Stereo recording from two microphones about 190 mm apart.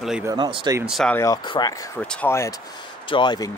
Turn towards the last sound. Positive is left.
turn(degrees=25)  # may be behind; listen again after turning